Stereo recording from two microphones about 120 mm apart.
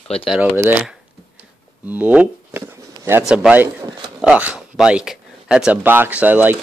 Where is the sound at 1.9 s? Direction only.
15° right (ahead or behind).